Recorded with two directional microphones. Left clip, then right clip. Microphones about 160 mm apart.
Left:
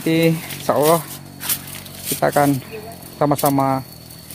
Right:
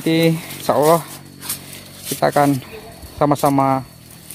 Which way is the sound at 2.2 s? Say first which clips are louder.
Right 1 dB; 25° right (ahead or behind).